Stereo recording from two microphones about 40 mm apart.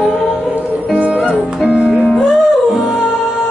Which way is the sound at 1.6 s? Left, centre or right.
Right.